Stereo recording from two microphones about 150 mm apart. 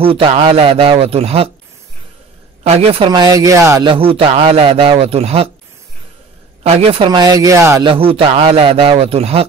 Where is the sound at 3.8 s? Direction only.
35° right (ahead or behind).